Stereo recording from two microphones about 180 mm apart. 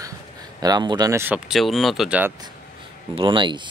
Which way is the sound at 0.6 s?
20° right (ahead or behind).